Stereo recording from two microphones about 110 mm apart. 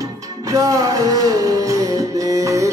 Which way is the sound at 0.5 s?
30° right (ahead or behind).